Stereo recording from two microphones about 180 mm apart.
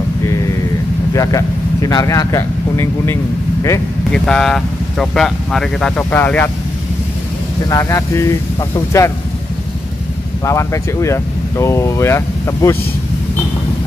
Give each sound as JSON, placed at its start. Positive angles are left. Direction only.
{"t": 1.1, "sound": "speech", "side_deg": 20}
{"t": 4.1, "sound": "speech", "side_deg": 5}
{"t": 7.6, "sound": "speech", "side_deg": 15}
{"t": 10.4, "sound": "speech", "side_deg": 15}